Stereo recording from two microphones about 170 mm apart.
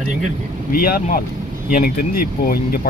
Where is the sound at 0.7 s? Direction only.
60° left (ahead or behind).